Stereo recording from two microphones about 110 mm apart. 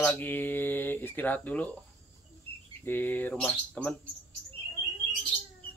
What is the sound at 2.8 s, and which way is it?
Speech, 20° left (ahead or behind).